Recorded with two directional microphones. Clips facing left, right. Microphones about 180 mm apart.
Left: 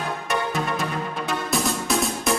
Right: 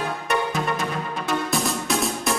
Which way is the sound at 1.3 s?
Centre (ahead or behind).